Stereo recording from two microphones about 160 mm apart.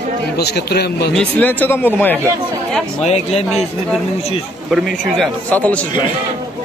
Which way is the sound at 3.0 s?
40° left (ahead or behind).